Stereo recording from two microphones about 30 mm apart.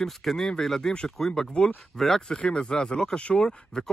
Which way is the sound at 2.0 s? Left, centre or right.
Centre.